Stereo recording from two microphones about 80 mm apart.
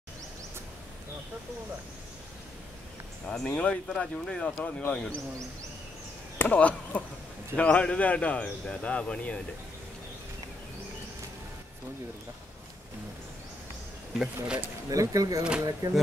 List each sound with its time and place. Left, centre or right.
3.3 s speech: centre
6.3 s speech: left
14.1 s speech: centre
14.9 s speech: right